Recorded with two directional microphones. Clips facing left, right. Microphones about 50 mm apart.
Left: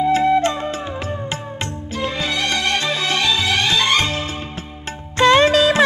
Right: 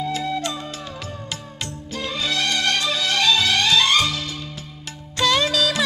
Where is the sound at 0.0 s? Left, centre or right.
Left.